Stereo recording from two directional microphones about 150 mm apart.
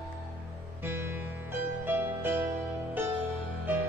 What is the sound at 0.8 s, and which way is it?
Music, 15° right (ahead or behind).